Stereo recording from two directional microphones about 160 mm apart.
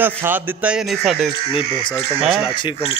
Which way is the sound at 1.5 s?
35° left (ahead or behind).